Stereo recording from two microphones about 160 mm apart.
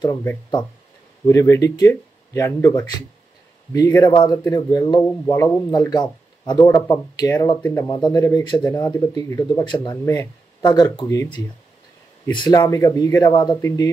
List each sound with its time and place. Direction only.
0.0 s a man's voice: 20° left (ahead or behind)
5.2 s a man's voice: 15° left (ahead or behind)
12.3 s a man's voice: 30° left (ahead or behind)
13.6 s speech: 20° left (ahead or behind)